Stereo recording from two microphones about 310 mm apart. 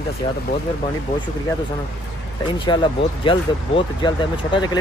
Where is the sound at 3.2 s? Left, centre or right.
Centre.